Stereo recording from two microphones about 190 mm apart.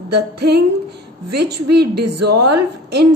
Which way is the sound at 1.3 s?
60° right (ahead or behind).